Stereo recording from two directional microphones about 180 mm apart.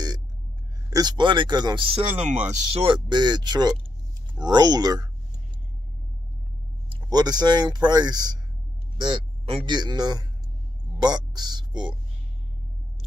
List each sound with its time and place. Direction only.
0.8 s speech: 20° right (ahead or behind); by 2.4 s 40° right (ahead or behind)
2.7 s speech: 30° right (ahead or behind)
6.9 s speech: 20° right (ahead or behind)